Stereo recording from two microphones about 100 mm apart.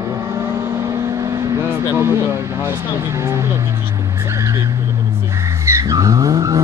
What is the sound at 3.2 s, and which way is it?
Speech, 30° right (ahead or behind).